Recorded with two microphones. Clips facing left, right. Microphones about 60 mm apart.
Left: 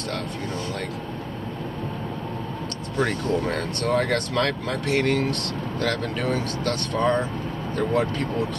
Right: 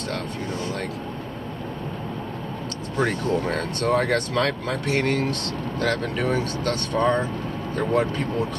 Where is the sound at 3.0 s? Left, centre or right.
Centre.